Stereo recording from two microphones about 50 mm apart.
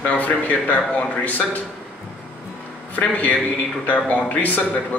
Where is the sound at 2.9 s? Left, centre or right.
Left.